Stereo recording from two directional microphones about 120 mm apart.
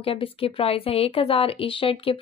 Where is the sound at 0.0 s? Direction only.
50° left (ahead or behind).